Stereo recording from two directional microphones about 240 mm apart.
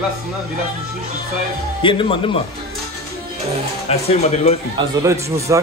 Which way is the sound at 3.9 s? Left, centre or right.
Left.